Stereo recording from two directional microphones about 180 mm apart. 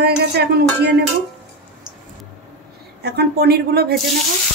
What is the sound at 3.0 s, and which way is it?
Speech, 65° right (ahead or behind).